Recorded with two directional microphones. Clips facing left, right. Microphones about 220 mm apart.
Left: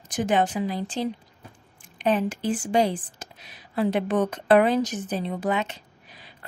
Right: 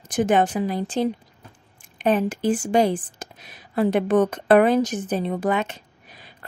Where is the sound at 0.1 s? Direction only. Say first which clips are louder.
Right 4 dB; 50° right (ahead or behind).